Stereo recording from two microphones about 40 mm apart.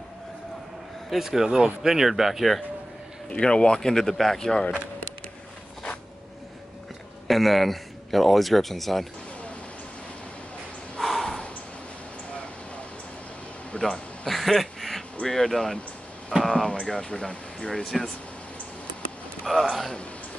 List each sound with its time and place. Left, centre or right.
1.1 s speech: centre
3.3 s speech: left
7.2 s a man's voice: centre
11.0 s snort: centre
13.7 s speech: left
14.2 s a sound: centre
15.2 s speech: centre
19.6 s a sound: centre